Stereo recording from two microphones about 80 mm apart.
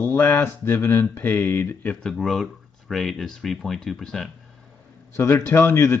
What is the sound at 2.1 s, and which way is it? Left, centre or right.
Speech, centre.